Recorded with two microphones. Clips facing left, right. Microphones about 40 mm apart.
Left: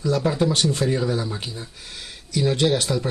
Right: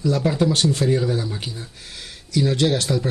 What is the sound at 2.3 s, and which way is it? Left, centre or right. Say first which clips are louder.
Speech: right 1 dB; centre.